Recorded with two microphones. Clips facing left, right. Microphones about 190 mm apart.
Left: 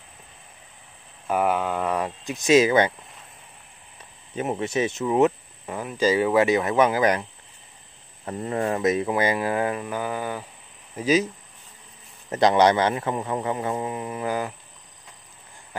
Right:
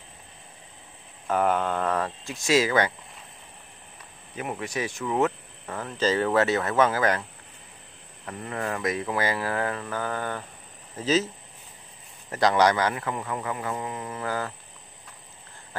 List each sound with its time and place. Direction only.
1.2 s speech: 10° left (ahead or behind)
4.4 s speech: 25° left (ahead or behind)
8.3 s speech: 25° left (ahead or behind)
12.3 s speech: 20° left (ahead or behind)